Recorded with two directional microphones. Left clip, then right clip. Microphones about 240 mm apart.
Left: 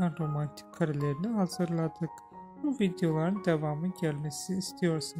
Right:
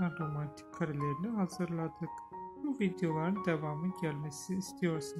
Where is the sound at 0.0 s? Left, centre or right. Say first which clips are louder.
Left 4 dB; left.